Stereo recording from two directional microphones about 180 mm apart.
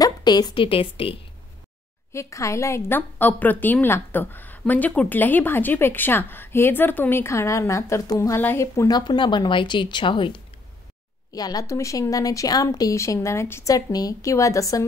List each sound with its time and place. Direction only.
0.0 s a woman's voice: 20° left (ahead or behind)
2.1 s a woman's voice: 15° left (ahead or behind)